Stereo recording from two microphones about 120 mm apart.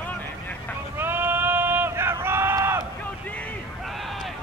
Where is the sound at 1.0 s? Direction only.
15° right (ahead or behind).